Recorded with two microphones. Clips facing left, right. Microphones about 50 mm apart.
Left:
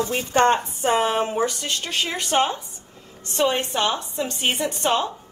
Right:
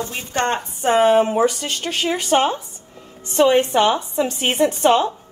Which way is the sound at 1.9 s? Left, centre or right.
Centre.